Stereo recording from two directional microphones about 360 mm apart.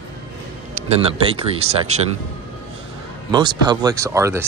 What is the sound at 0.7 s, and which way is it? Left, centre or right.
Speech, centre.